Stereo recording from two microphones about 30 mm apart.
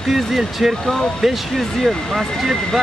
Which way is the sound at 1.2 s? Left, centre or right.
Centre.